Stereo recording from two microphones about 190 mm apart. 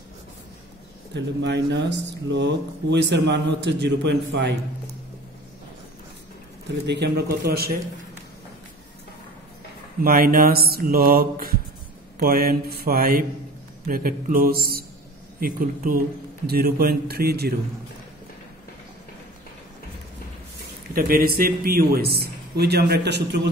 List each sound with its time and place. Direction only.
1.1 s speech: 65° right (ahead or behind)
6.9 s speech: 60° right (ahead or behind)
10.0 s mantra: 50° right (ahead or behind)
13.8 s a man's voice: 50° right (ahead or behind)
15.4 s mantra: 50° right (ahead or behind)
16.4 s speech: 55° right (ahead or behind)
20.9 s speech: 50° right (ahead or behind)